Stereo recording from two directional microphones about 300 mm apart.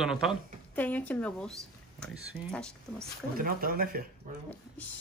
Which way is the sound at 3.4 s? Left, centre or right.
Right.